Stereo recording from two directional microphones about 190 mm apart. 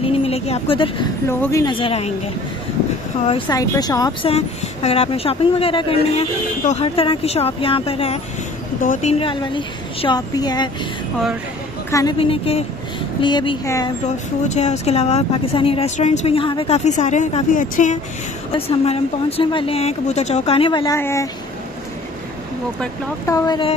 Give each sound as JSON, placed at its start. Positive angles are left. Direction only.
{"t": 0.1, "sound": "speech", "side_deg": 30}
{"t": 1.4, "sound": "a woman's voice", "side_deg": 15}
{"t": 3.4, "sound": "a woman's voice", "side_deg": 20}
{"t": 4.3, "sound": "a woman's voice", "side_deg": 30}
{"t": 8.8, "sound": "speech", "side_deg": 45}
{"t": 9.2, "sound": "a woman's voice", "side_deg": 25}
{"t": 11.9, "sound": "a woman's voice", "side_deg": 20}
{"t": 12.2, "sound": "a woman's voice", "side_deg": 30}
{"t": 14.4, "sound": "a woman's voice", "side_deg": 35}
{"t": 23.2, "sound": "a woman's voice", "side_deg": 20}